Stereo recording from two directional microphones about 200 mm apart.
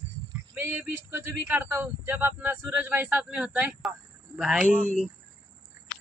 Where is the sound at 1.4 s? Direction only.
10° right (ahead or behind).